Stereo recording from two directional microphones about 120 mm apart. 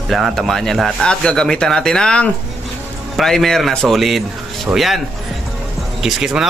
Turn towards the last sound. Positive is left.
turn(degrees=-5)  # may be behind; listen again after turning